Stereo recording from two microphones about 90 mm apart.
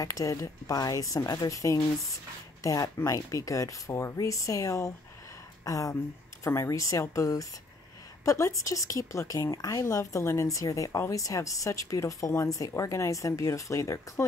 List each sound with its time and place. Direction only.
0.0 s speech: 35° left (ahead or behind)